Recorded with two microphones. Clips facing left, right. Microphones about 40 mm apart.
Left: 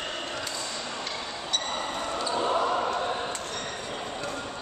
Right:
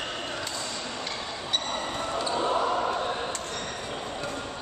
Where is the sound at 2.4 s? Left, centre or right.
Centre.